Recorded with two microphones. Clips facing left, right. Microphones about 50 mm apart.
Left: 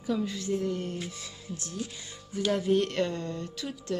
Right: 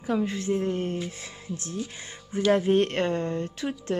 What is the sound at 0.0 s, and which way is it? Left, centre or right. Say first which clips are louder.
Speech: right 4 dB; right.